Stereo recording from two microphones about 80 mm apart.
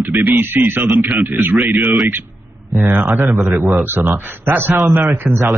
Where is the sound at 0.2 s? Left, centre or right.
Right.